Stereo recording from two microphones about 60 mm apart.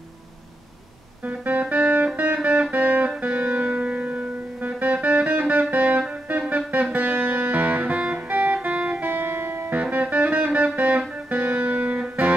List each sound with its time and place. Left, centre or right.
1.2 s music: right